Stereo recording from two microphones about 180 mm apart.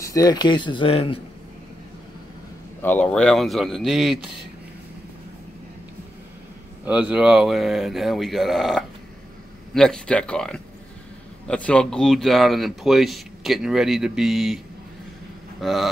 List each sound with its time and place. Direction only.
0.0 s speech: 20° left (ahead or behind)
2.8 s speech: 10° left (ahead or behind)
6.8 s speech: 5° right (ahead or behind)
15.6 s speech: centre (ahead or behind)